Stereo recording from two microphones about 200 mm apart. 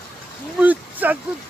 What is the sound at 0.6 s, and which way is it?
Speech, 10° right (ahead or behind).